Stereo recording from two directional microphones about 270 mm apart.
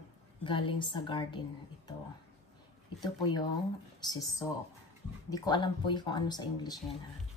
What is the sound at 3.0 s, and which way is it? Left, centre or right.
A woman's voice, centre.